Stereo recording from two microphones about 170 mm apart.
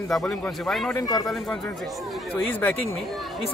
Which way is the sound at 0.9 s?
20° left (ahead or behind).